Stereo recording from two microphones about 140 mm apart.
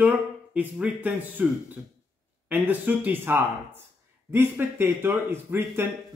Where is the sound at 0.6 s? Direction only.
10° right (ahead or behind).